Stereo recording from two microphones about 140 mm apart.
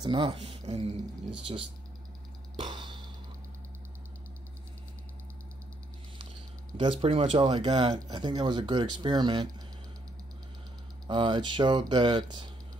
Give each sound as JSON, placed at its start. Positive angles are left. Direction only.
{"t": 0.0, "sound": "speech", "side_deg": -35}
{"t": 2.5, "sound": "a sound", "side_deg": -35}
{"t": 6.8, "sound": "speech", "side_deg": -40}
{"t": 11.1, "sound": "speech", "side_deg": -35}